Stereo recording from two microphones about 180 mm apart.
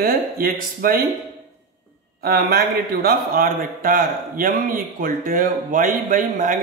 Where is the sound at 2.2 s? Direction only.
60° right (ahead or behind).